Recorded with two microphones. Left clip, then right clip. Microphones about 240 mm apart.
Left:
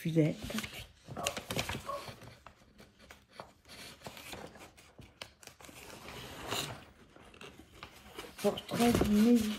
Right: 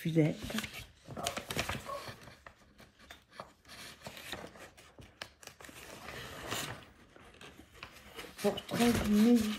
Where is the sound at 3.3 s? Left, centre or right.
Left.